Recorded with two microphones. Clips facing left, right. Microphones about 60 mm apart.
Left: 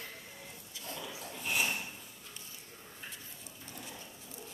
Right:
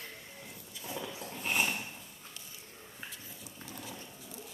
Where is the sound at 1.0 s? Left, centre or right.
Right.